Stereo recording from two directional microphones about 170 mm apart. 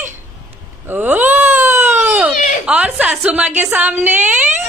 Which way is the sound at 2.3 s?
50° left (ahead or behind).